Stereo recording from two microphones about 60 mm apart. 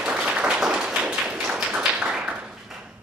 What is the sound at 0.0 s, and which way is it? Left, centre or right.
Tap, centre.